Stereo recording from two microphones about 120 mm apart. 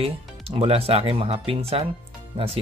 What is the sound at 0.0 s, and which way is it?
Speech, 55° right (ahead or behind).